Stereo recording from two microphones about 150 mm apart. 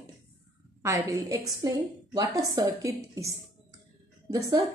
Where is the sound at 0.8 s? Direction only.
20° right (ahead or behind).